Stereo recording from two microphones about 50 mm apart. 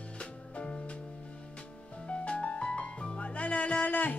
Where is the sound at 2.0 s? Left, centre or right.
Left.